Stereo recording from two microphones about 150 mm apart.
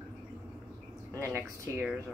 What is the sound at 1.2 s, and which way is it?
Speech, 15° right (ahead or behind).